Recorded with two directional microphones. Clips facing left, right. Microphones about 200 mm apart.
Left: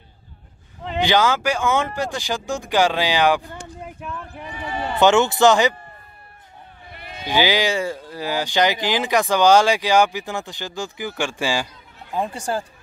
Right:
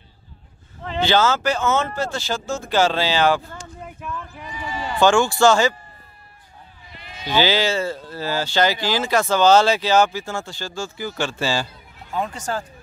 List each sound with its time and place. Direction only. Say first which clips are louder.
0.9 s speech: even; 15° left (ahead or behind)
4.3 s a sound: left 1 dB; 60° left (ahead or behind)
4.9 s speech: left 1 dB; 20° left (ahead or behind)
6.9 s run: left 4 dB; 55° left (ahead or behind)
7.2 s speech: even; 15° left (ahead or behind)